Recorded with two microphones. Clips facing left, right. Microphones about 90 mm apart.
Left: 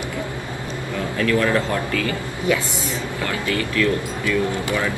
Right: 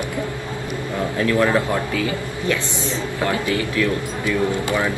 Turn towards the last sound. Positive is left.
turn(degrees=-20)  # may be behind; listen again after turning